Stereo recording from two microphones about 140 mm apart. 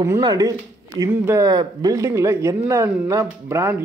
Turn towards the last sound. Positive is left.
turn(degrees=-20)  # may be behind; listen again after turning